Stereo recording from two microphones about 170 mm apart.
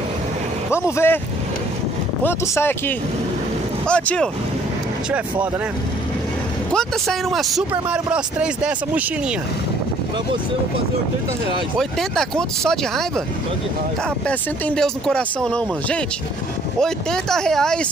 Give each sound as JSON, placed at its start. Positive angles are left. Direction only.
{"t": 0.7, "sound": "speech", "side_deg": 15}
{"t": 2.2, "sound": "speech", "side_deg": 15}
{"t": 3.8, "sound": "speech", "side_deg": 5}
{"t": 6.7, "sound": "speech", "side_deg": 5}
{"t": 11.8, "sound": "speech", "side_deg": 0}
{"t": 14.2, "sound": "speech", "side_deg": 5}